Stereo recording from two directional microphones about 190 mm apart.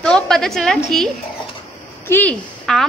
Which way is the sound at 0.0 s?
5° left (ahead or behind).